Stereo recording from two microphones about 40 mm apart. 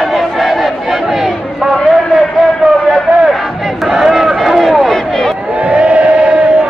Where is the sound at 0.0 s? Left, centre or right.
Centre.